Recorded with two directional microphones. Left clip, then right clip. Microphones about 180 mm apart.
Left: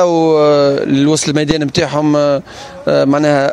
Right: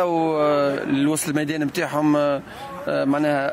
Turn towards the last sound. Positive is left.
turn(degrees=45)  # may be behind; listen again after turning